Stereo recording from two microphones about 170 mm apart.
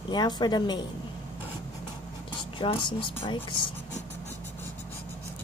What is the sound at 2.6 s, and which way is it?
Speech, 30° left (ahead or behind).